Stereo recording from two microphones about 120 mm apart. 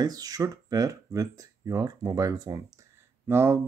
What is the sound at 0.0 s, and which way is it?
Speech, 30° right (ahead or behind).